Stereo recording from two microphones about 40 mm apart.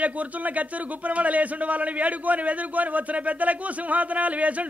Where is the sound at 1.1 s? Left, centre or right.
Right.